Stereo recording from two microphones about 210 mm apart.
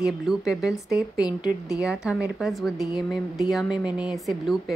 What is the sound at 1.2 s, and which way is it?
Speech, 20° left (ahead or behind).